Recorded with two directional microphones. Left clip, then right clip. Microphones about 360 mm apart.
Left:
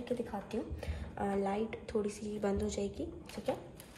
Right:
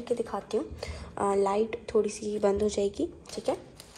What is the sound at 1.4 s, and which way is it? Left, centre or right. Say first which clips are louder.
Speech: right 9 dB; centre.